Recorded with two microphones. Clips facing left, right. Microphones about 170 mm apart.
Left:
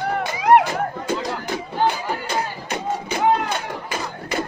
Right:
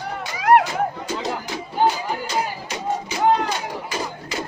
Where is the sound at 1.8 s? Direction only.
20° right (ahead or behind).